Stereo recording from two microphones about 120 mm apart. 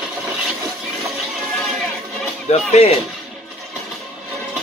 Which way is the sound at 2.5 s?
60° left (ahead or behind).